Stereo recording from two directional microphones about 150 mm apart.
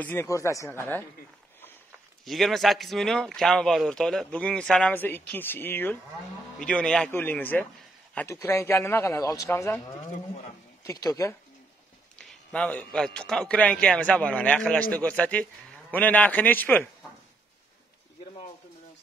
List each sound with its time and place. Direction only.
0.0 s a man's voice: 15° left (ahead or behind)
2.2 s a man's voice: centre (ahead or behind); by 11.3 s 20° left (ahead or behind)
12.3 s a man's voice: 10° left (ahead or behind)